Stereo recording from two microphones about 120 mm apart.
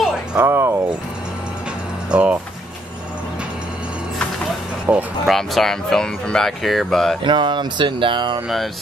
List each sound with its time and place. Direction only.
0.0 s a sound: 5° right (ahead or behind)
0.5 s speech: 20° right (ahead or behind)
2.0 s speech: 10° right (ahead or behind)
4.8 s music: 10° right (ahead or behind)
5.3 s speech: centre (ahead or behind)
7.2 s speech: 40° right (ahead or behind)